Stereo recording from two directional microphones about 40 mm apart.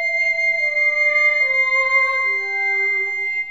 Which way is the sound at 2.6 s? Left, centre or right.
Left.